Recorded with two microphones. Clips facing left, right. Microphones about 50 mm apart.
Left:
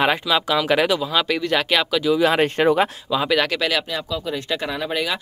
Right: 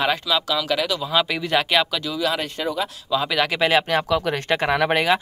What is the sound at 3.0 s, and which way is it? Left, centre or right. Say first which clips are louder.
Speech: left 2 dB; centre.